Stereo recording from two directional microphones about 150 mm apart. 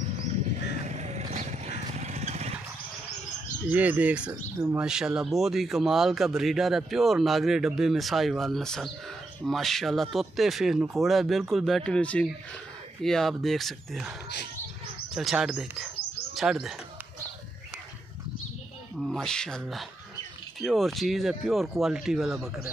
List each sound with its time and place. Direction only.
0.8 s vehicle: 50° right (ahead or behind)
3.6 s speech: 10° right (ahead or behind)
4.3 s speech: 20° right (ahead or behind)
4.7 s speech: 5° right (ahead or behind)
15.1 s speech: 5° right (ahead or behind)
18.9 s speech: centre (ahead or behind)